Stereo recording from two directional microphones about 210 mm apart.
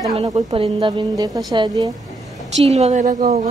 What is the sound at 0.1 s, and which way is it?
A woman's voice, 25° right (ahead or behind).